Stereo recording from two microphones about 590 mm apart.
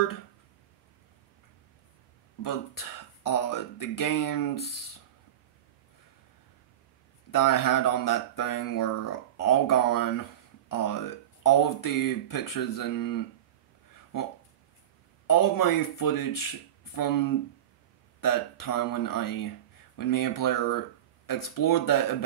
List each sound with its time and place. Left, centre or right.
3.3 s speech: left
7.2 s speech: left
15.2 s speech: left